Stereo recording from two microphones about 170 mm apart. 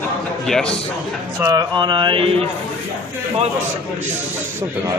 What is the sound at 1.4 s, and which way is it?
A man's voice, 20° right (ahead or behind).